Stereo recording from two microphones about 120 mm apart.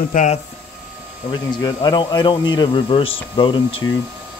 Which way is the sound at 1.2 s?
35° left (ahead or behind).